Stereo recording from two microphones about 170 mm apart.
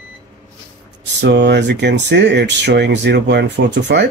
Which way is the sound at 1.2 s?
90° right.